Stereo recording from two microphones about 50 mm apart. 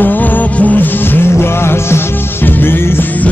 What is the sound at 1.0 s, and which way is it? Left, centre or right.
Music, left.